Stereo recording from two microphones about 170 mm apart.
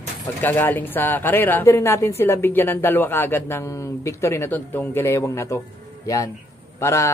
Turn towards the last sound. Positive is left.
turn(degrees=15)  # may be behind; listen again after turning